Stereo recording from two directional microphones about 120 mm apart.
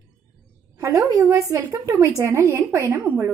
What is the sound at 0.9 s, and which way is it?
A woman's voice, 25° right (ahead or behind).